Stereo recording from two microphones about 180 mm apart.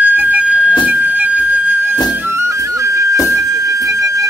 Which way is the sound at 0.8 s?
10° right (ahead or behind).